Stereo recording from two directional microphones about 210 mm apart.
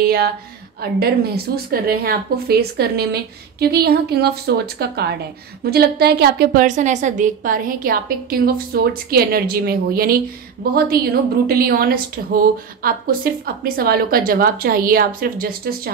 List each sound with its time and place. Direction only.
0.0 s a woman's voice: 45° right (ahead or behind)